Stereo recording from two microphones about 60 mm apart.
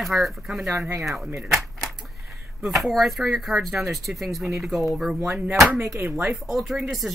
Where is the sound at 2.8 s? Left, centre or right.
Centre.